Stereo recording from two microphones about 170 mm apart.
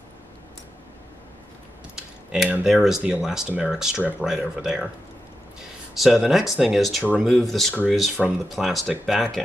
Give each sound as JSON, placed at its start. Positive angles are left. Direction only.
{"t": 2.0, "sound": "speech", "side_deg": -5}